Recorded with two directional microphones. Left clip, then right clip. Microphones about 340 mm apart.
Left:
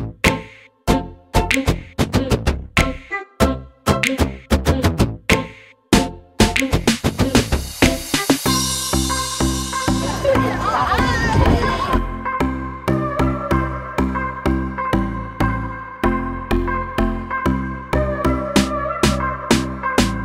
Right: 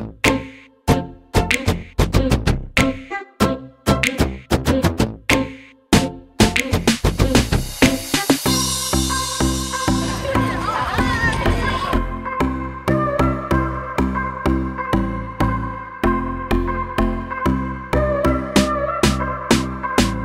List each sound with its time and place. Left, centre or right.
0.2 s music: centre
11.1 s music: centre
11.9 s music: centre